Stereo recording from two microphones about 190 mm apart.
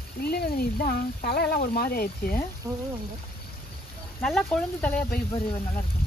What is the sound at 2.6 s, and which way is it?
Speech, 15° right (ahead or behind).